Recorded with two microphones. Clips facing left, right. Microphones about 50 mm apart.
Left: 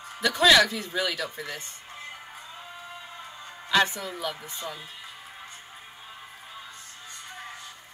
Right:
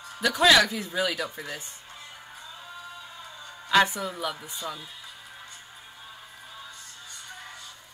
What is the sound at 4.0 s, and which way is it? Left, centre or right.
Speech, centre.